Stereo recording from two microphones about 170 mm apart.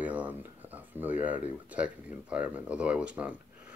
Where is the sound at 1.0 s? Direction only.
10° right (ahead or behind).